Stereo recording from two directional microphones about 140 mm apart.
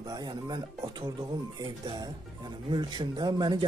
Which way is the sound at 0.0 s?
25° right (ahead or behind).